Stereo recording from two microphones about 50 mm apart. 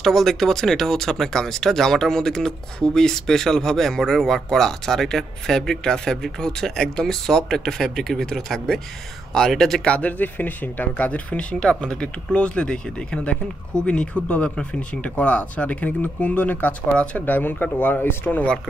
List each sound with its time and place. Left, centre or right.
0.0 s speech: centre
9.8 s speech: left
17.3 s speech: left